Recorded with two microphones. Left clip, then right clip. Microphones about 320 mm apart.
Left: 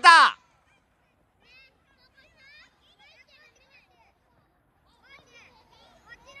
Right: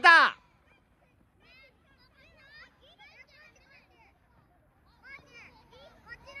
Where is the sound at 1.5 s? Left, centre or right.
Left.